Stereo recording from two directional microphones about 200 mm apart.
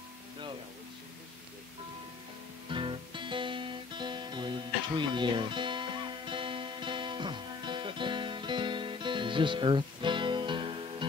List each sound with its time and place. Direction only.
2.7 s music: 25° right (ahead or behind)